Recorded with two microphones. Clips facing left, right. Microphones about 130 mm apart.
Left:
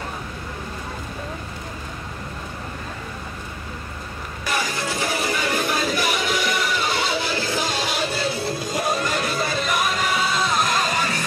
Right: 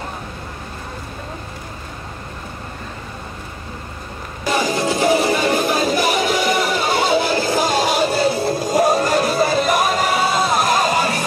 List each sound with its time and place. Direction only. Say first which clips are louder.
4.5 s music: right 7 dB; 25° right (ahead or behind)